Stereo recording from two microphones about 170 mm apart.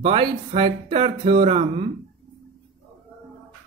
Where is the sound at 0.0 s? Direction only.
35° right (ahead or behind).